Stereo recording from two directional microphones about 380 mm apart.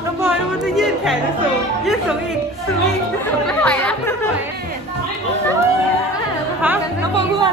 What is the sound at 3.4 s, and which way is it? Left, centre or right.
Speech, centre.